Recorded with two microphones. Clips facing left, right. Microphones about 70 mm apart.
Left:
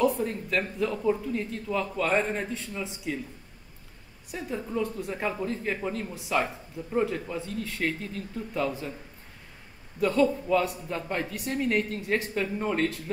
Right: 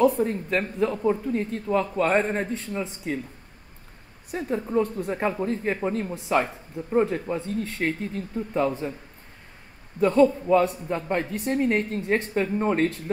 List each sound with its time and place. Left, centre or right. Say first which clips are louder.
0.0 s speech: right 5 dB; right
4.3 s speech: right 6 dB; right
9.9 s a woman's voice: right 5 dB; right